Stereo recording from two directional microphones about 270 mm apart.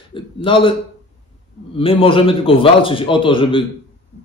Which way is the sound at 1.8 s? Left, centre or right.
Centre.